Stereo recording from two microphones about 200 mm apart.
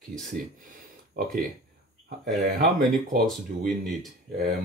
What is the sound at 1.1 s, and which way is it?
Speech, 45° right (ahead or behind).